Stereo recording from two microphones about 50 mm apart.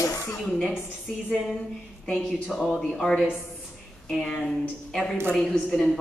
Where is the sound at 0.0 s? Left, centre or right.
Left.